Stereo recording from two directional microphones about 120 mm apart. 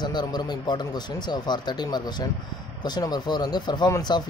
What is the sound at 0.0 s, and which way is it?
Speech, 35° left (ahead or behind).